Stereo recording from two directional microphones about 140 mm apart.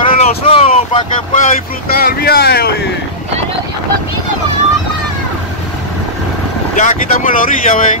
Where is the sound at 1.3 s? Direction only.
80° left.